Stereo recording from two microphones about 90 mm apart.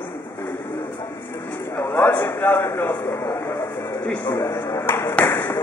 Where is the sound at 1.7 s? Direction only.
25° left (ahead or behind).